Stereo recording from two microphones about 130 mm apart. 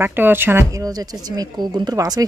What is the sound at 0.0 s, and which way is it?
Speech, 15° right (ahead or behind).